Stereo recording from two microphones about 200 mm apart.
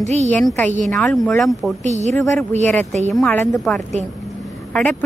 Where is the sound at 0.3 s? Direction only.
5° left (ahead or behind).